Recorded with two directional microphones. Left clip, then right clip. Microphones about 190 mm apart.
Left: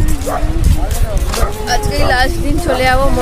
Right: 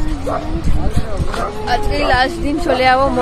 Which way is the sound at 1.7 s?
Centre (ahead or behind).